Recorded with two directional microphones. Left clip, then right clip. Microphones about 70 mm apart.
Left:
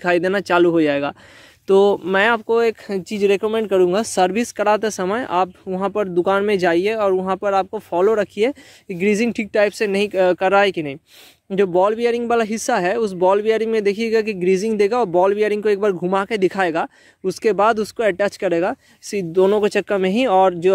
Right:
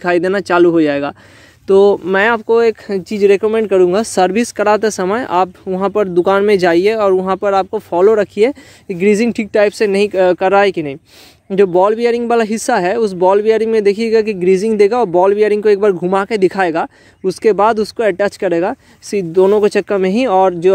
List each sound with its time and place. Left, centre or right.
0.0 s speech: left
1.7 s speech: left
19.3 s speech: left